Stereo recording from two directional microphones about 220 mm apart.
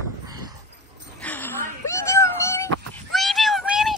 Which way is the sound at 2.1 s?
15° left (ahead or behind).